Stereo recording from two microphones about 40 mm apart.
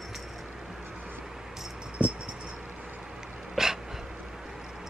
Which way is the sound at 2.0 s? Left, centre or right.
Right.